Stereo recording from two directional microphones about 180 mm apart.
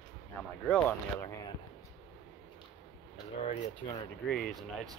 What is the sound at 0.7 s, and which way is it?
Speech, 5° left (ahead or behind).